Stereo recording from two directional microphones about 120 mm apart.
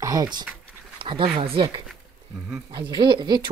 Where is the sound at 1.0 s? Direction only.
45° right (ahead or behind).